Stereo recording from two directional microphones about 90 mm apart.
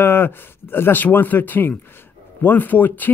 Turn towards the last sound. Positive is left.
turn(degrees=20)  # may be behind; listen again after turning